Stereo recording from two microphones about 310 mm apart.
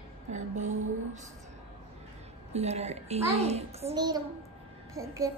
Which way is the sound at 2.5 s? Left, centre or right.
Centre.